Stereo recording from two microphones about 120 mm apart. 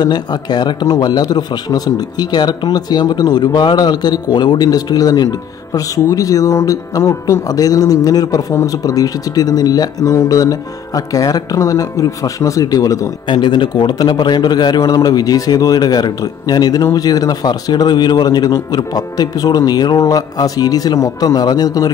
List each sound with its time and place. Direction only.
0.0 s speech: 35° left (ahead or behind)
13.3 s speech: 40° left (ahead or behind)